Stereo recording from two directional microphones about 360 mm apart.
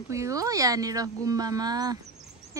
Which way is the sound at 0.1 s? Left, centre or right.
Centre.